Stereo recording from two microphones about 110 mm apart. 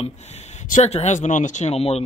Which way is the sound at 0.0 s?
85° left.